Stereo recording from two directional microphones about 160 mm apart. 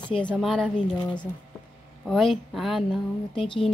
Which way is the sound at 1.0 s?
30° left (ahead or behind).